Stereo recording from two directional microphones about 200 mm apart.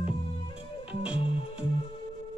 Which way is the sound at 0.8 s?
5° right (ahead or behind).